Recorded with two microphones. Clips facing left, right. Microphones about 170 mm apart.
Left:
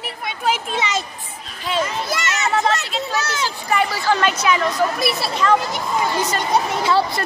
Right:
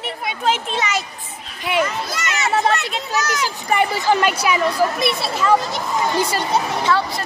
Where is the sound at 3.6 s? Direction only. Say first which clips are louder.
Right 2 dB; 20° right (ahead or behind).